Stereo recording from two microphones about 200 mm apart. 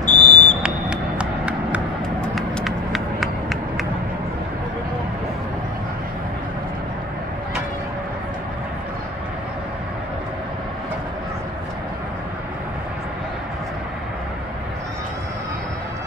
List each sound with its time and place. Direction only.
0.0 s smoke detector: 35° left (ahead or behind)
0.6 s a sound: 5° right (ahead or behind)
2.2 s run: centre (ahead or behind)